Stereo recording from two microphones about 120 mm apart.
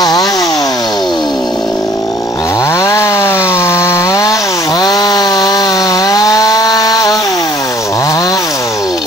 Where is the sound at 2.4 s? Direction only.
25° left (ahead or behind).